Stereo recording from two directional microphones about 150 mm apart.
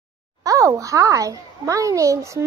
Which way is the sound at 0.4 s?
20° right (ahead or behind).